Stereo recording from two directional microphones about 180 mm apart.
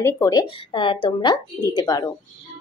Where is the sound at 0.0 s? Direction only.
20° left (ahead or behind).